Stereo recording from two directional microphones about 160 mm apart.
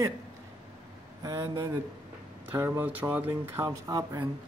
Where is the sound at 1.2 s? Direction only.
20° right (ahead or behind).